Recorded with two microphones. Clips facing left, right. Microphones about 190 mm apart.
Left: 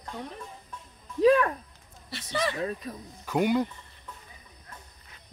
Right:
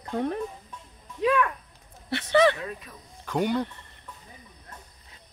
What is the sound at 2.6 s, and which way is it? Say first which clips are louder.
Speech: left 5 dB; 40° left (ahead or behind).